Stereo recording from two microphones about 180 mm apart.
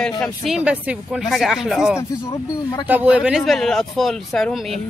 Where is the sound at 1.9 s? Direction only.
15° left (ahead or behind).